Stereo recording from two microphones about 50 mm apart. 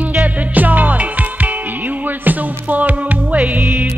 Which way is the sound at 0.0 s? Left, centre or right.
Right.